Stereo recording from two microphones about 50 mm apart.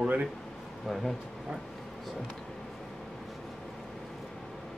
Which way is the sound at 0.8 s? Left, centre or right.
Centre.